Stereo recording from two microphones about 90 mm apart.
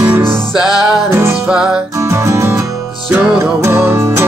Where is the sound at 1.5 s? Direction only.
10° right (ahead or behind).